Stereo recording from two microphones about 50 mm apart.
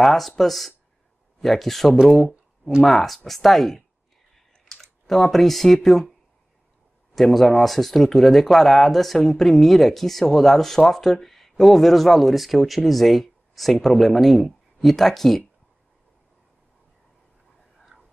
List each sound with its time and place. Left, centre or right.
0.0 s speech: centre
2.0 s a sound: centre
2.8 s speech: centre
7.2 s speech: centre